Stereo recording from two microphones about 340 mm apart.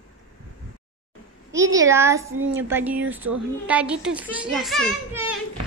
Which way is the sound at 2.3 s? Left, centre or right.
Right.